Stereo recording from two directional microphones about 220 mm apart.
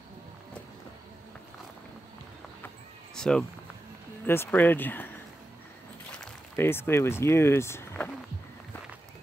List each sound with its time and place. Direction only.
3.2 s speech: 5° left (ahead or behind)
6.1 s speech: 10° left (ahead or behind)